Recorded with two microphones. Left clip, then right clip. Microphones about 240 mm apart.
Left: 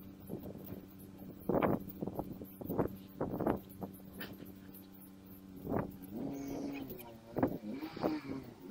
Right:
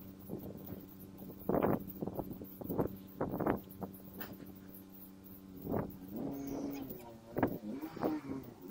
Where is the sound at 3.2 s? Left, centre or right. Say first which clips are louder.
Even; centre.